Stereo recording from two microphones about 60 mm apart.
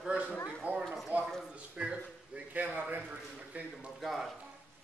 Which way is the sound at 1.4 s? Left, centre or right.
Centre.